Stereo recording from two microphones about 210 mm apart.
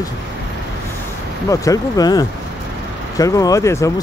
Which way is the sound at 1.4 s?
15° left (ahead or behind).